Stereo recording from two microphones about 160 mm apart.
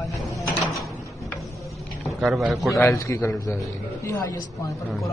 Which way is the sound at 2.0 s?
Centre (ahead or behind).